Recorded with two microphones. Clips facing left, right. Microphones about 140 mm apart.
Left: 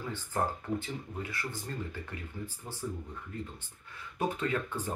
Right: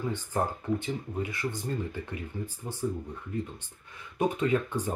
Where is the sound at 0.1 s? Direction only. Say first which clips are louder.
Right 3 dB; 20° right (ahead or behind).